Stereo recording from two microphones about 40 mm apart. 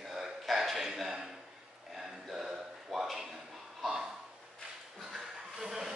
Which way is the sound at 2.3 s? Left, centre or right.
Centre.